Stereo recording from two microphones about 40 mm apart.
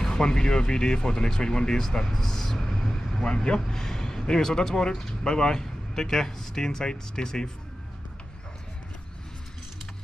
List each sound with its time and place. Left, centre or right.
0.0 s speech: centre